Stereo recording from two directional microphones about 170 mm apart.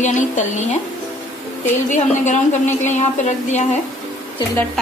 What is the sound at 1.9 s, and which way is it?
A woman's voice, 45° left (ahead or behind).